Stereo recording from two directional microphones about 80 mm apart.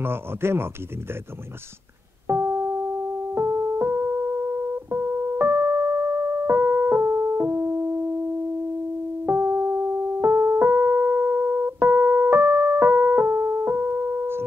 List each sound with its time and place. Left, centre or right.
0.0 s speech: right
2.2 s music: right
9.2 s music: right
10.2 s keyboard: right